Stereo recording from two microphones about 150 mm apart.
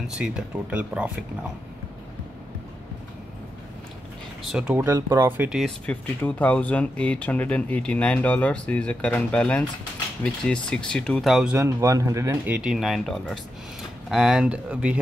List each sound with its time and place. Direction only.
0.0 s speech: 5° right (ahead or behind)
4.4 s speech: 5° right (ahead or behind)
4.7 s speech: 20° right (ahead or behind)
5.9 s speech: 10° left (ahead or behind)
11.5 s speech: 20° right (ahead or behind)
12.5 s speech: 5° right (ahead or behind)